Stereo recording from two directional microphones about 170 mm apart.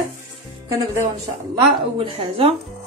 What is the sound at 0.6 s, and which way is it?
Speech, 20° right (ahead or behind).